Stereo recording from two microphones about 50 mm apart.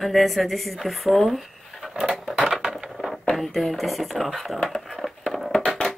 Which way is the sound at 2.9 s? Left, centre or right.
Centre.